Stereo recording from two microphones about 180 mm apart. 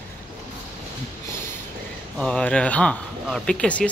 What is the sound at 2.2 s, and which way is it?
Speech, 5° left (ahead or behind).